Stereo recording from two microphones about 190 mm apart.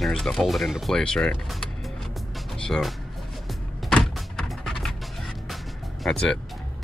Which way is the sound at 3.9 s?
5° left (ahead or behind).